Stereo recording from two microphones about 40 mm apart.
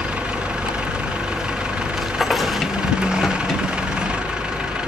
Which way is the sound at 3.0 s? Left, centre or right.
Centre.